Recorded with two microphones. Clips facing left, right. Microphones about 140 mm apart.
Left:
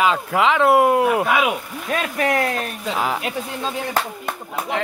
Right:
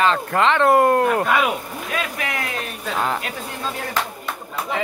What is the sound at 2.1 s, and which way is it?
Speech, 40° left (ahead or behind).